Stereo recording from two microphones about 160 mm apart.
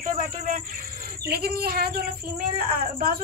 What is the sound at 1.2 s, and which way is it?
Speech, 75° right (ahead or behind).